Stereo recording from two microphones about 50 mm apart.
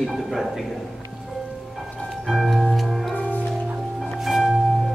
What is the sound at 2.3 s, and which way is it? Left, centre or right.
Music, centre.